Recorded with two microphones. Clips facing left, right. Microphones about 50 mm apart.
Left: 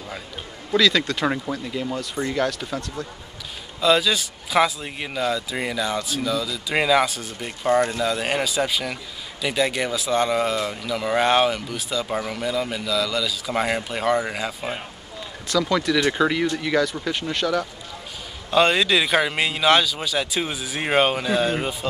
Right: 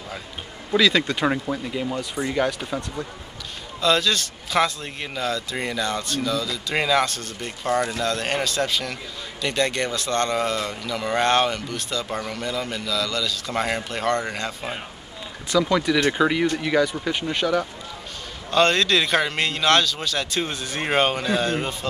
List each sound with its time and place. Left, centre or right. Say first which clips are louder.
0.7 s speech: even; centre
1.2 s speech: right 1 dB; centre
3.8 s a man's voice: left 2 dB; centre
15.6 s speech: even; centre
18.5 s speech: left 1 dB; centre